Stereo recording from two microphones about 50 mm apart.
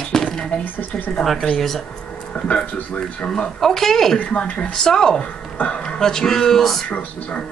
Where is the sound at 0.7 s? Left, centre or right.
Left.